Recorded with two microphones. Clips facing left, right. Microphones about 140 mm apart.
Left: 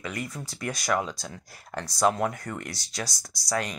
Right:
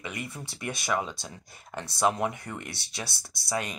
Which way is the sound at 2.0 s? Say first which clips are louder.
Left 2 dB; 5° right (ahead or behind).